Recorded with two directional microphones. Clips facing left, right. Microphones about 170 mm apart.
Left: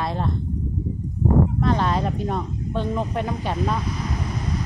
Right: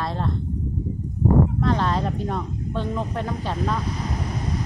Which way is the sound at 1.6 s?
15° left (ahead or behind).